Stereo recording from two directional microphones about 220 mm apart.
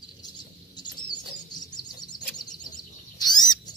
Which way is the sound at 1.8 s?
20° left (ahead or behind).